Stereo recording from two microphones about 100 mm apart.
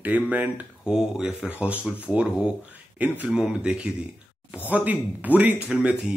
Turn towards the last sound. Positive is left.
turn(degrees=-10)  # may be behind; listen again after turning